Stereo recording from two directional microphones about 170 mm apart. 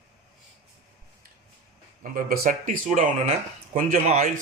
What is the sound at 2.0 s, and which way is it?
Speech, 55° right (ahead or behind).